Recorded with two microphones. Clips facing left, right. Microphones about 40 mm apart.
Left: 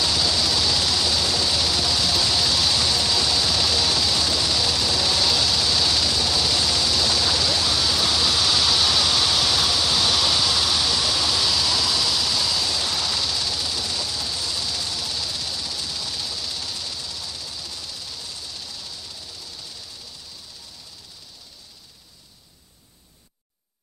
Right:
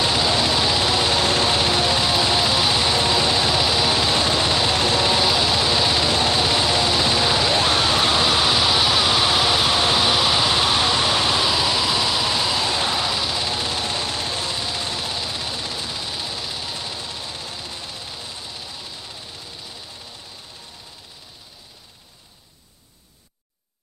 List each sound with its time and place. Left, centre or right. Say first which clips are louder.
0.0 s vehicle: right 3 dB; right